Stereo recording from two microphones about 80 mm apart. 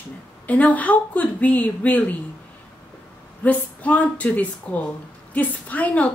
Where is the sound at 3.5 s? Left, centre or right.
Centre.